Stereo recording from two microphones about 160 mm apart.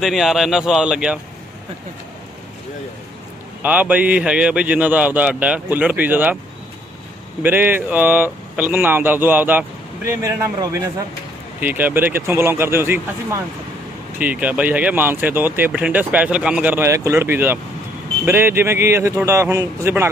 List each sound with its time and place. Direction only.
0.0 s speech: centre (ahead or behind)
3.6 s speech: 10° right (ahead or behind)
7.4 s speech: 10° right (ahead or behind)